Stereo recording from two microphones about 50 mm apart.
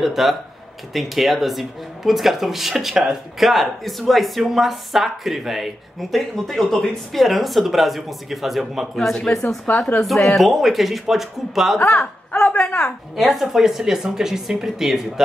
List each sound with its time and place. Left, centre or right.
0.0 s speech: centre
9.7 s speech: left
10.0 s speech: centre
12.4 s a woman's voice: centre
13.1 s speech: centre